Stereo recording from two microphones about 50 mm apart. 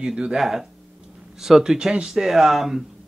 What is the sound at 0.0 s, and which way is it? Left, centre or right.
A man's voice, centre.